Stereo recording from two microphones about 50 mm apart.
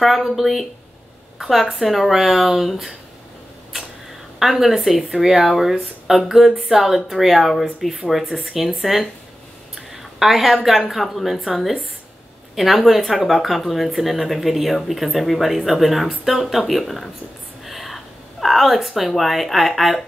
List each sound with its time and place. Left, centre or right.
0.0 s speech: centre
4.4 s speech: centre